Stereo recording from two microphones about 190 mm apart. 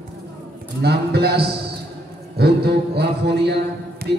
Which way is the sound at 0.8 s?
55° right (ahead or behind).